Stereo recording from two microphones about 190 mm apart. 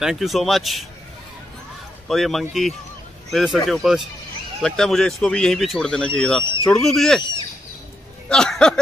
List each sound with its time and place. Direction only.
0.0 s speech: centre (ahead or behind)
2.0 s speech: centre (ahead or behind)
6.4 s speech: 25° left (ahead or behind)
6.7 s speech: centre (ahead or behind)
8.3 s speech: 5° left (ahead or behind)